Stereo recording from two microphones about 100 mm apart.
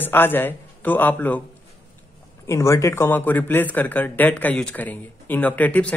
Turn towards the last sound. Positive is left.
turn(degrees=15)  # may be behind; listen again after turning